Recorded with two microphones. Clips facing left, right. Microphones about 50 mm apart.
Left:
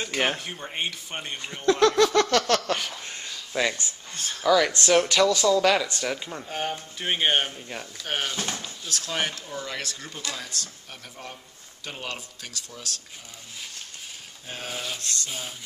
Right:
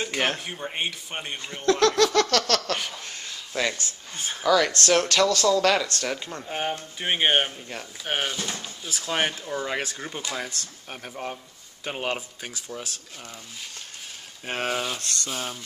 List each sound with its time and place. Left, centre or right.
0.0 s speech: centre
1.7 s a sound: centre
3.3 s a sound: centre
4.1 s speech: centre
4.5 s speech: centre
7.0 s speech: centre
7.5 s speech: centre
8.0 s speech: centre
9.1 s speech: right
14.4 s speech: right
15.0 s a sound: right